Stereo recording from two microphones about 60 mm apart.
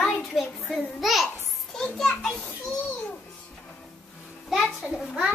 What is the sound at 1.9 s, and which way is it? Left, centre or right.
Children playing, centre.